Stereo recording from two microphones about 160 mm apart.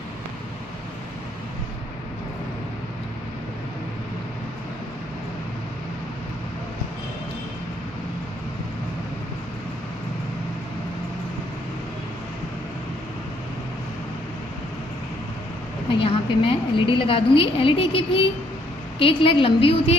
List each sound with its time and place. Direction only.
15.9 s a woman's voice: 35° left (ahead or behind)